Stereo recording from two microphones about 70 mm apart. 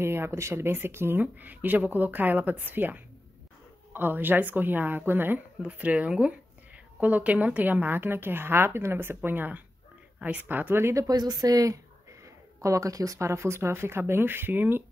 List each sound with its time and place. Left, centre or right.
0.0 s speech: right
5.6 s speech: centre
10.8 s speech: right
11.1 s speech: right